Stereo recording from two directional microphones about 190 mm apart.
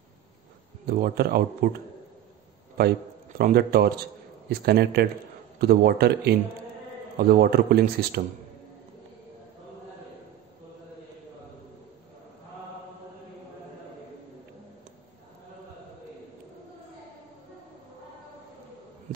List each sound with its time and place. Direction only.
0.8 s speech: 50° right (ahead or behind)
2.8 s speech: 55° right (ahead or behind)